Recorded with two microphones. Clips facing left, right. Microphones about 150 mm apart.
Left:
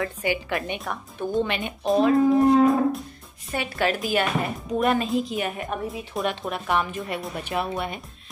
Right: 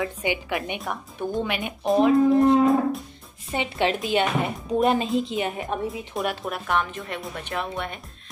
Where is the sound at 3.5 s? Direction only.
20° right (ahead or behind).